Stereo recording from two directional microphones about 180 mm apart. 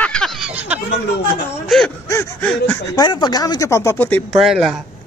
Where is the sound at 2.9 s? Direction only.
25° left (ahead or behind); by 4.8 s centre (ahead or behind).